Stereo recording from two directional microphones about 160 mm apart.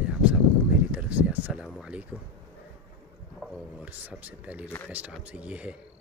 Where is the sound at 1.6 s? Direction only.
5° right (ahead or behind).